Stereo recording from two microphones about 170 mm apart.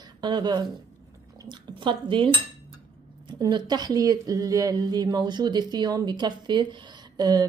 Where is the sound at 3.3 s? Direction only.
25° right (ahead or behind).